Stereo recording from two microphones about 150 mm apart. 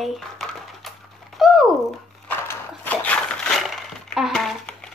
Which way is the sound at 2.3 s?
10° left (ahead or behind).